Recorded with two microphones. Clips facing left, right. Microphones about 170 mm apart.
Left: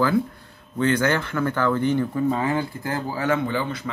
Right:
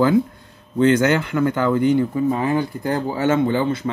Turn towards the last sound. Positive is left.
turn(degrees=-25)  # may be behind; listen again after turning